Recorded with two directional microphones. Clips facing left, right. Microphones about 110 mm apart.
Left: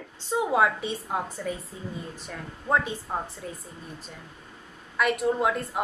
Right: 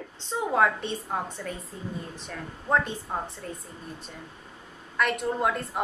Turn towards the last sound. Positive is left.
turn(degrees=0)  # may be behind; listen again after turning